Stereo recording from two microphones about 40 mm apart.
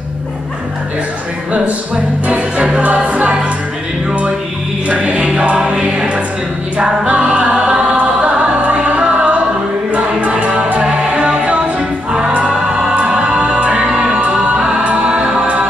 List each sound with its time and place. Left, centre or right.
2.2 s music: right
4.8 s music: right